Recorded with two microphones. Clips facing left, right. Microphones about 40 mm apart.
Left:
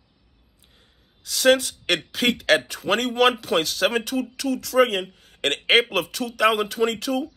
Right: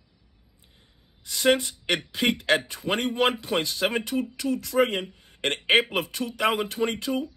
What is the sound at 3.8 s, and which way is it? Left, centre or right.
Speech, centre.